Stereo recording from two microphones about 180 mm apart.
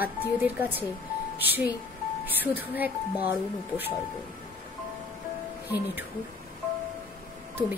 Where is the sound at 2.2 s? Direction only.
10° right (ahead or behind).